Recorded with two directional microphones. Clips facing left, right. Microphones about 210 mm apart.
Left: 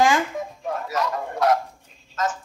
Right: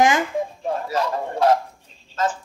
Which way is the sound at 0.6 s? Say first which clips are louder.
Left 1 dB; 30° right (ahead or behind).